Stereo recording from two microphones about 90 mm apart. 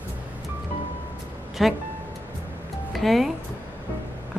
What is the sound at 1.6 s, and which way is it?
Speech, centre (ahead or behind).